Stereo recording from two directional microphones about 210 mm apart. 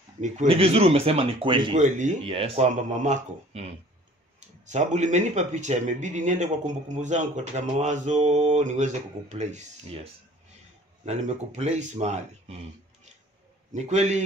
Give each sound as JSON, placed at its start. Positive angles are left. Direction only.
{"t": 0.2, "sound": "speech", "side_deg": -30}
{"t": 11.1, "sound": "speech", "side_deg": -30}
{"t": 13.7, "sound": "speech", "side_deg": -35}